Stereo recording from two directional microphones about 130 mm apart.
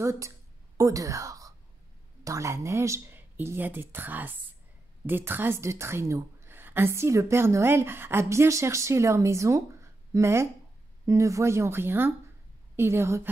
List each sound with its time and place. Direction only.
0.0 s a woman's voice: 25° right (ahead or behind)